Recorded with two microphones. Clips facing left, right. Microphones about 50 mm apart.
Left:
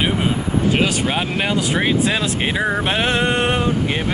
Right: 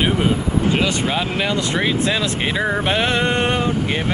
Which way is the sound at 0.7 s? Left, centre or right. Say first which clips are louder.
Left 1 dB; left.